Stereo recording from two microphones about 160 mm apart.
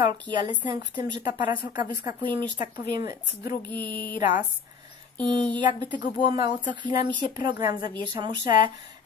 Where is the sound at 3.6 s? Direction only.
10° left (ahead or behind).